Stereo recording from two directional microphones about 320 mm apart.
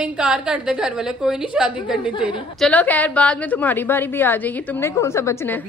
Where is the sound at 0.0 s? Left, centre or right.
Centre.